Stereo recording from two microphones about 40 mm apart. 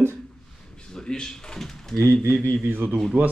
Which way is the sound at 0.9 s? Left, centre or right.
Centre.